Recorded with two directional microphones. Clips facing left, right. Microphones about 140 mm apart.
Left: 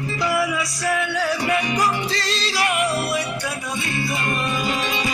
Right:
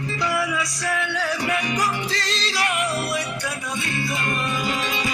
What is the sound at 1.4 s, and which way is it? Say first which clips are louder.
Music: left 3 dB; 25° left (ahead or behind).